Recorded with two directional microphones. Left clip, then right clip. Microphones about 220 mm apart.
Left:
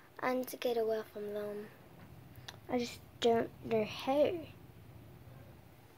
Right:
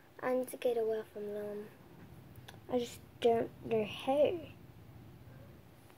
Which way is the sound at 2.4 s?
15° left (ahead or behind).